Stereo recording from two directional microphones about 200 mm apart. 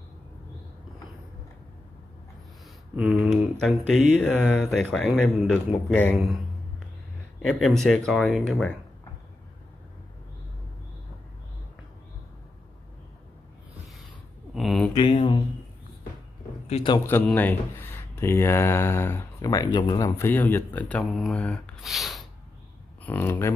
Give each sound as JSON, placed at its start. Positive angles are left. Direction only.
{"t": 3.0, "sound": "speech", "side_deg": 0}
{"t": 7.4, "sound": "speech", "side_deg": 0}
{"t": 14.5, "sound": "a sound", "side_deg": 0}
{"t": 15.1, "sound": "a sound", "side_deg": 25}
{"t": 16.6, "sound": "a man's voice", "side_deg": 30}
{"t": 16.9, "sound": "speech", "side_deg": 10}
{"t": 20.1, "sound": "speech", "side_deg": 10}